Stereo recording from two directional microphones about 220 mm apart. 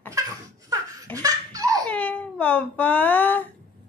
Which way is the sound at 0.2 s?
15° right (ahead or behind).